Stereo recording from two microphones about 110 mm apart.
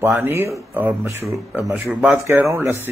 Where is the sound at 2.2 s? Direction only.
25° right (ahead or behind).